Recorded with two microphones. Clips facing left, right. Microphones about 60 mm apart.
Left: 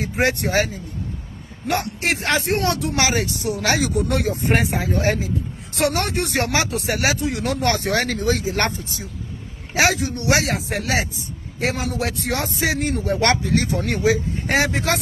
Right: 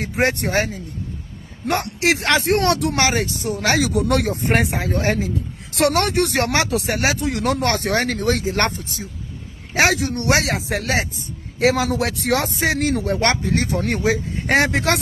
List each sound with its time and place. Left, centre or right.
0.2 s speech: right
2.0 s speech: right
3.0 s speech: right
3.7 s speech: right
4.3 s speech: right
5.7 s speech: right
7.2 s speech: right
7.6 s speech: right
11.6 s speech: right
13.2 s speech: right
14.4 s speech: right